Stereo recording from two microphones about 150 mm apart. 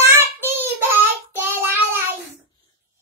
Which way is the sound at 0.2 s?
15° right (ahead or behind).